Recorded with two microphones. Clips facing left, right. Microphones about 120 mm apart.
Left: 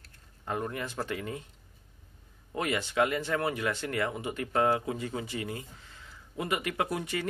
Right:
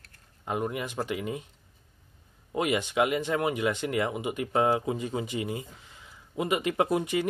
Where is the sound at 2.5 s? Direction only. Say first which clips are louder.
Right 3 dB; 20° right (ahead or behind).